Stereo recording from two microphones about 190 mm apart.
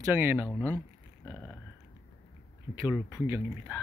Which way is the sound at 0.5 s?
10° left (ahead or behind).